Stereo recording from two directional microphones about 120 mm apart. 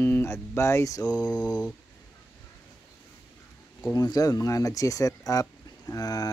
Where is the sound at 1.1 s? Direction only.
10° left (ahead or behind).